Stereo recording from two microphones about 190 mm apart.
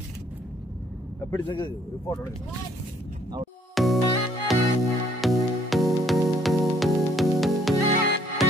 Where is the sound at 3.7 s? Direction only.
Centre (ahead or behind).